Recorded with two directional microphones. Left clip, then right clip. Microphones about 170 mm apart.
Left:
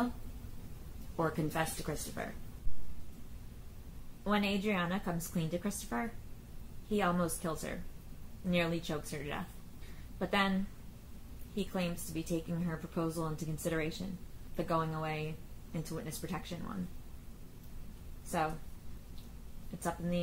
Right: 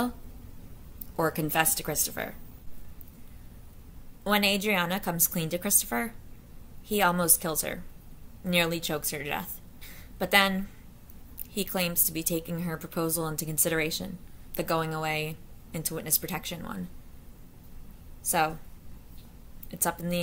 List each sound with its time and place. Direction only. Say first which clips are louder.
1.1 s a woman's voice: right 8 dB; 15° right (ahead or behind)
4.2 s a woman's voice: right 9 dB; 15° right (ahead or behind)
11.5 s a woman's voice: right 8 dB; 10° right (ahead or behind)
19.8 s a woman's voice: right 7 dB; 15° right (ahead or behind)